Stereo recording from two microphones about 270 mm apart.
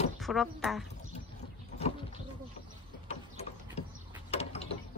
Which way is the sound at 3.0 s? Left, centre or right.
Left.